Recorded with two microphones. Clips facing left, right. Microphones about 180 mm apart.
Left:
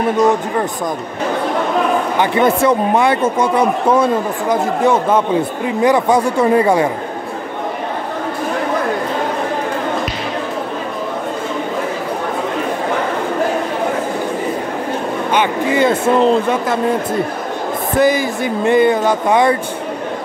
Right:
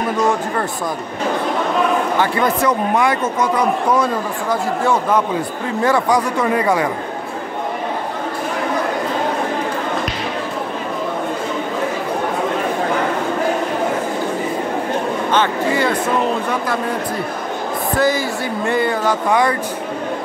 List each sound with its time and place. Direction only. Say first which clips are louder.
2.1 s a man's voice: left 3 dB; 25° left (ahead or behind)
15.3 s a sound: left 3 dB; 20° left (ahead or behind)
17.9 s a man's voice: left 4 dB; 20° left (ahead or behind)